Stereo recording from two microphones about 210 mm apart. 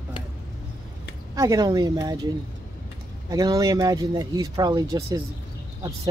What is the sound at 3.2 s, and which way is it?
Speech, 20° right (ahead or behind).